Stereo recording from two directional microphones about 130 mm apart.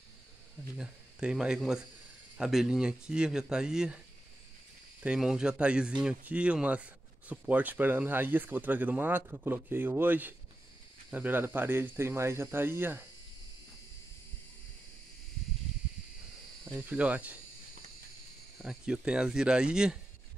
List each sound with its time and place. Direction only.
0.7 s speech: 5° right (ahead or behind)
5.0 s speech: 5° right (ahead or behind)
16.6 s speech: 15° right (ahead or behind)
18.6 s speech: 5° right (ahead or behind)